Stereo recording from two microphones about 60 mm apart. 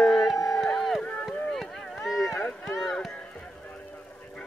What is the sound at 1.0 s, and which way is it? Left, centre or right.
Run, centre.